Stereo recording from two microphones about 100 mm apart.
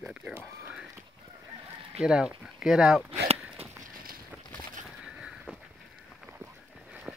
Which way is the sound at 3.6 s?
90° right.